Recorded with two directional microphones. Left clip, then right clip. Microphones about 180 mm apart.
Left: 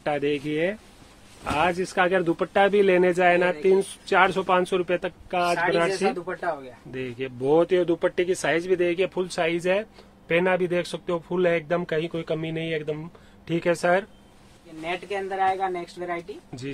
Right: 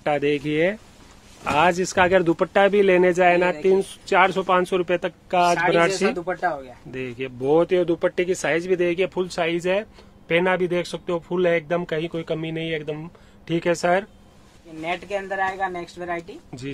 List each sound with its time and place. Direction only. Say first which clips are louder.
0.0 s a man's voice: right 4 dB; 15° right (ahead or behind)
6.9 s speech: right 1 dB; 15° right (ahead or behind)
14.9 s speech: right 2 dB; 60° right (ahead or behind)
16.7 s speech: right 2 dB; 10° right (ahead or behind)